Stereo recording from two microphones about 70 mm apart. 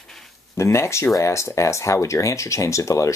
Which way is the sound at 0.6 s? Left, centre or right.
Left.